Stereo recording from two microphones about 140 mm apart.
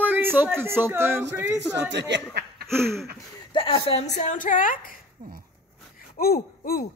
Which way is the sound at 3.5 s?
40° left (ahead or behind).